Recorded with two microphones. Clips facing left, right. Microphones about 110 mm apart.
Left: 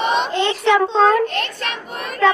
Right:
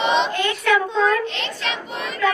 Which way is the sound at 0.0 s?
50° left (ahead or behind).